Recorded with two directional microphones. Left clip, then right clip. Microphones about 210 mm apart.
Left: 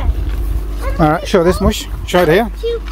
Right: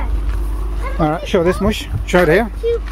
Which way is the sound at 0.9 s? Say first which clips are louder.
Left 4 dB; 20° left (ahead or behind).